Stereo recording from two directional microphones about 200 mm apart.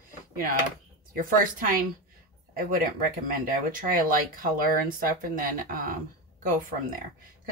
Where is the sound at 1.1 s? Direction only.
45° right (ahead or behind).